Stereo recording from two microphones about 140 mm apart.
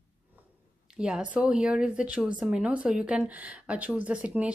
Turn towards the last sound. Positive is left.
turn(degrees=-10)  # may be behind; listen again after turning